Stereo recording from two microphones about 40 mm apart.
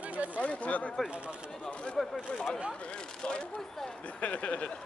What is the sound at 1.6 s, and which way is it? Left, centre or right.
Speech, left.